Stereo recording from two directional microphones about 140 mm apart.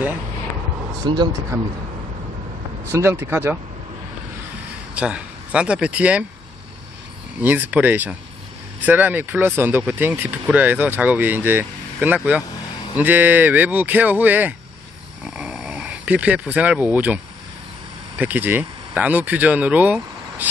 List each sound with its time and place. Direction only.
1.0 s speech: 30° right (ahead or behind)
2.9 s speech: 20° right (ahead or behind)
4.9 s speech: 10° right (ahead or behind)
7.3 s speech: 15° right (ahead or behind)
15.2 s a sound: 5° right (ahead or behind)
18.1 s speech: 10° right (ahead or behind)